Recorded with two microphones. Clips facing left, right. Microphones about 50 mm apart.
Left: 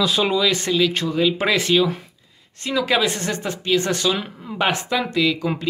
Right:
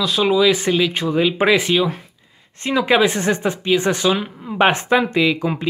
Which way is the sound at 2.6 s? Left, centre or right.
Right.